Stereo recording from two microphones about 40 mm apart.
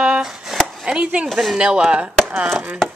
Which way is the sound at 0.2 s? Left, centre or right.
Centre.